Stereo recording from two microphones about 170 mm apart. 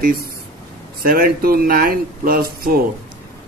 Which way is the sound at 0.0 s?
65° right (ahead or behind).